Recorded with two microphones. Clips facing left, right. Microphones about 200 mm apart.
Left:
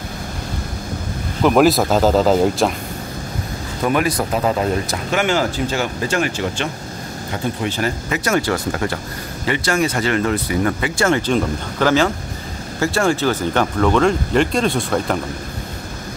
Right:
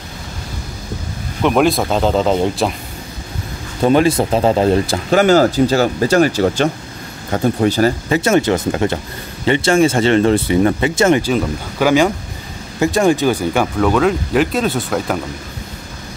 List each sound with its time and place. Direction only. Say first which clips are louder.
1.4 s speech: left 1 dB; centre (ahead or behind)
3.8 s speech: right 6 dB; 30° right (ahead or behind); by 15.1 s 5° right (ahead or behind)